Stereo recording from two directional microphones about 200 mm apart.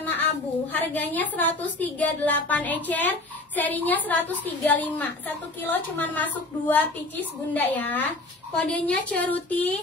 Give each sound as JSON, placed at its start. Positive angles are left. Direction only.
{"t": 0.0, "sound": "a woman's voice", "side_deg": 10}